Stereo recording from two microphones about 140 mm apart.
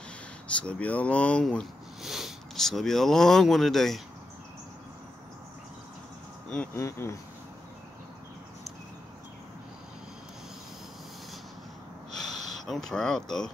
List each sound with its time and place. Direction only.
0.6 s speech: 10° left (ahead or behind)
6.5 s speech: 10° left (ahead or behind)
6.8 s speech: 20° left (ahead or behind)
12.2 s speech: centre (ahead or behind)